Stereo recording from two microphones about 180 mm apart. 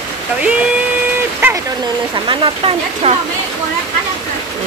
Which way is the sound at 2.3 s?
30° right (ahead or behind).